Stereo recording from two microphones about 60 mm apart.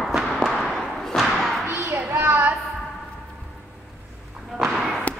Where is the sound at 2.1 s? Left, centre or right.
Right.